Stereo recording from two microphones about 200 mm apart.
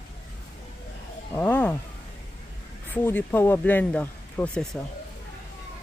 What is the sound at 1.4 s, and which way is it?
Speech, 10° left (ahead or behind).